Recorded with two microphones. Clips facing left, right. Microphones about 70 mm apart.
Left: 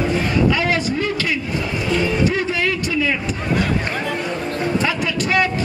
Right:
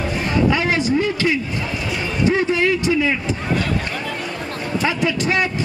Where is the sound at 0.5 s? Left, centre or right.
Right.